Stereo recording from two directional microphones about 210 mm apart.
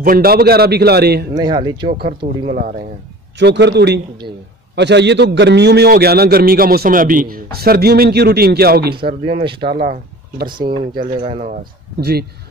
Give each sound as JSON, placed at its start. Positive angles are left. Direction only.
{"t": 0.0, "sound": "a man's voice", "side_deg": -45}
{"t": 1.3, "sound": "speech", "side_deg": -20}
{"t": 3.3, "sound": "a man's voice", "side_deg": -55}
{"t": 8.9, "sound": "speech", "side_deg": -25}
{"t": 9.8, "sound": "speech", "side_deg": -40}
{"t": 10.6, "sound": "speech", "side_deg": -20}
{"t": 11.3, "sound": "a man's voice", "side_deg": -40}